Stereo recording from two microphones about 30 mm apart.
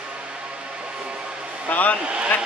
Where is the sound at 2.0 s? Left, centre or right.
Right.